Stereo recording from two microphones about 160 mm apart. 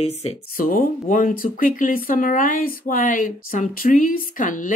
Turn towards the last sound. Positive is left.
turn(degrees=55)  # may be behind; listen again after turning